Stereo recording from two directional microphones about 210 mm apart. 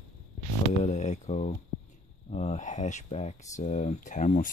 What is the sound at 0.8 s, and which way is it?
Speech, 35° left (ahead or behind).